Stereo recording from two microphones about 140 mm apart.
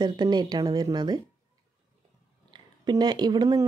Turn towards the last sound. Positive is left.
turn(degrees=-30)  # may be behind; listen again after turning